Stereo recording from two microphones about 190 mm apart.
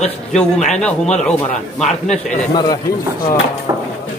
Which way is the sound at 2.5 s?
20° left (ahead or behind).